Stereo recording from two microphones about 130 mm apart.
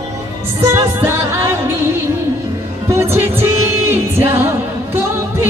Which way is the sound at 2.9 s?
20° right (ahead or behind).